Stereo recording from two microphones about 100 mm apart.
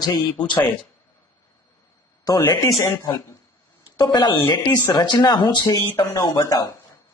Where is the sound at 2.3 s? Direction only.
40° left (ahead or behind).